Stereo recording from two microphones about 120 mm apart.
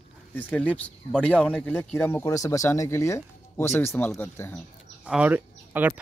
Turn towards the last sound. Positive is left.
turn(degrees=-15)  # may be behind; listen again after turning